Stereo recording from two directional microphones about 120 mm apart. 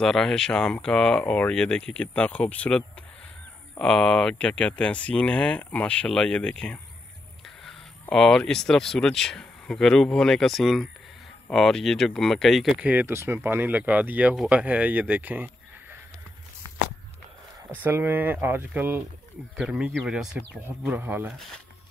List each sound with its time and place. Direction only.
0.0 s speech: 5° left (ahead or behind)
12.8 s speech: 15° right (ahead or behind)
17.8 s speech: 15° right (ahead or behind)
19.5 s speech: 5° right (ahead or behind)
20.6 s speech: 15° right (ahead or behind)